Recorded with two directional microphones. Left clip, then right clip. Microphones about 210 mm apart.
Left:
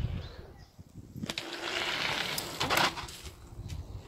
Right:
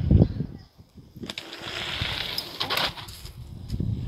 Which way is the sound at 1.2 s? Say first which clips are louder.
Right 1 dB; 10° right (ahead or behind).